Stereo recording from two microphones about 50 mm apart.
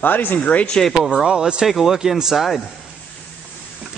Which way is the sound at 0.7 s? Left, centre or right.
Centre.